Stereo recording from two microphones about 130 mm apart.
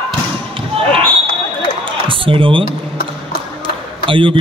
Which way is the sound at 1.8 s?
40° right (ahead or behind).